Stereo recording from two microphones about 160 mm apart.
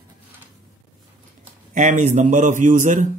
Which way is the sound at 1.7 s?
50° right (ahead or behind).